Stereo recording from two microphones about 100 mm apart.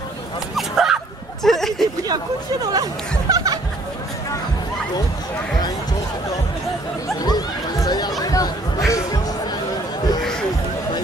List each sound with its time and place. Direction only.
0.6 s honk: 5° right (ahead or behind)
1.4 s a sound: 5° left (ahead or behind)
2.6 s speech: 40° right (ahead or behind)
7.2 s chatter: 45° left (ahead or behind)